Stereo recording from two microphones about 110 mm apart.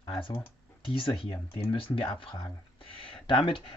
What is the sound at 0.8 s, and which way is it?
Speech, 50° left (ahead or behind).